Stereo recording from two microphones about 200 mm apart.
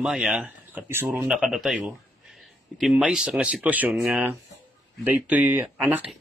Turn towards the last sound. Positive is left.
turn(degrees=-10)  # may be behind; listen again after turning